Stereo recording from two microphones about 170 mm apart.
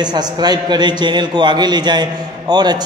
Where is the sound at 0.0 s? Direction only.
25° right (ahead or behind).